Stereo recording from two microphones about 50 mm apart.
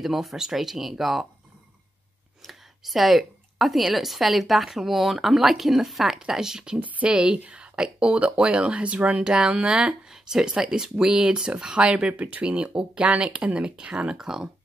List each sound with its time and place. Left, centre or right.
0.0 s a woman's voice: centre
2.4 s a woman's voice: centre